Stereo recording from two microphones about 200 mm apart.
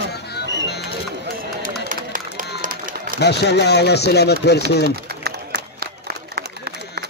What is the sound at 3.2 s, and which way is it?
Speech, 60° left (ahead or behind).